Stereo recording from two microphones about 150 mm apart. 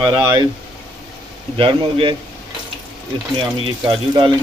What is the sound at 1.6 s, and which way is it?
Speech, 35° right (ahead or behind).